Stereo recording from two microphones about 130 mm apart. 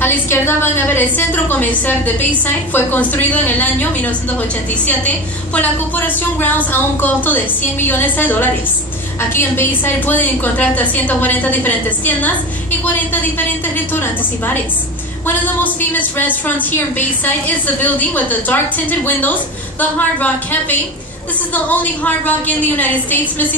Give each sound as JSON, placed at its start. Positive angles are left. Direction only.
{"t": 0.0, "sound": "a woman's voice", "side_deg": 15}